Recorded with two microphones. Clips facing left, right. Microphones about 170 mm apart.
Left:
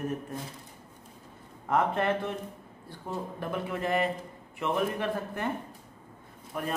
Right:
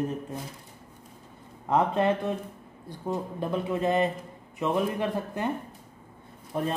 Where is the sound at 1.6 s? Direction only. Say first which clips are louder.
Right 3 dB; 20° right (ahead or behind).